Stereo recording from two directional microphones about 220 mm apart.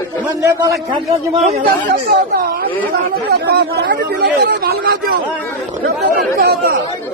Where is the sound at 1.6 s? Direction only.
40° right (ahead or behind).